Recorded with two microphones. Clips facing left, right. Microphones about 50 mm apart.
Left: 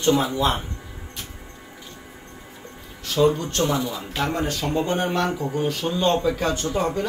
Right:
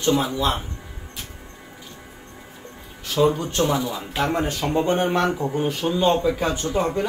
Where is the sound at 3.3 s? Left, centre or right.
Centre.